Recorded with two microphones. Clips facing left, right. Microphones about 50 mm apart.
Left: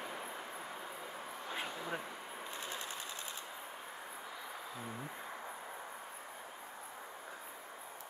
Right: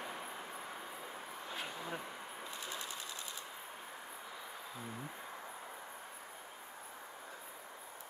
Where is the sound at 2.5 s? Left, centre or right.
Left.